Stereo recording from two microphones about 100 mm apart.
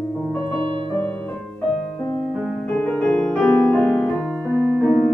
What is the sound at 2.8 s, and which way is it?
Music, 10° left (ahead or behind).